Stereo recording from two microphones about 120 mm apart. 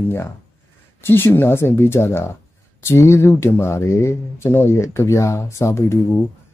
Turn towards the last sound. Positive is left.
turn(degrees=20)  # may be behind; listen again after turning